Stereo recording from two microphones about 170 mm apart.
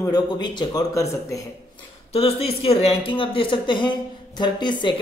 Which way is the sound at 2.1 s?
35° left (ahead or behind).